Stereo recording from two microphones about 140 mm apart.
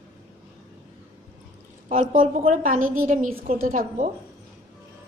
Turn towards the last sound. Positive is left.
turn(degrees=-70)  # may be behind; listen again after turning